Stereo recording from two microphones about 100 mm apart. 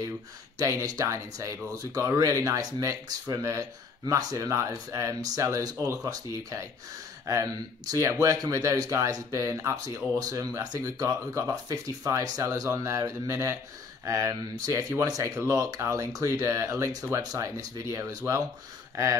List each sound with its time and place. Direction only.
0.6 s speech: 30° right (ahead or behind)
17.2 s speech: 40° right (ahead or behind)